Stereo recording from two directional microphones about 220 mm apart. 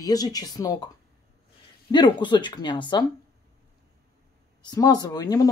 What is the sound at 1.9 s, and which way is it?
Speech, 20° left (ahead or behind).